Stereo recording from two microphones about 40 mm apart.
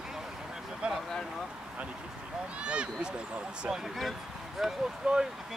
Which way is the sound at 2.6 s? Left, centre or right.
Right.